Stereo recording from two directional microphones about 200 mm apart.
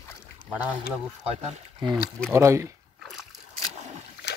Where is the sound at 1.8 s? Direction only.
25° right (ahead or behind).